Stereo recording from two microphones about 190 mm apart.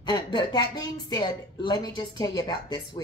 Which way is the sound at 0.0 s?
25° left (ahead or behind).